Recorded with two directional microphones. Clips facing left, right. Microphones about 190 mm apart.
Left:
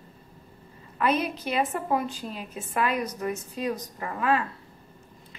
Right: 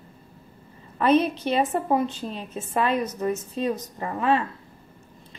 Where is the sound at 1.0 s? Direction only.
30° right (ahead or behind).